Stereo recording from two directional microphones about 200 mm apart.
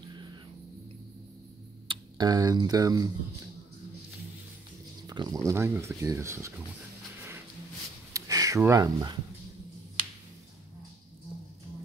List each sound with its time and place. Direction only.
1.9 s speech: 20° right (ahead or behind)
5.0 s speech: 20° right (ahead or behind)
8.1 s a sound: 15° right (ahead or behind)